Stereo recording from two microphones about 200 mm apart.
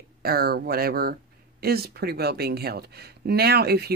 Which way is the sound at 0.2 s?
50° right (ahead or behind).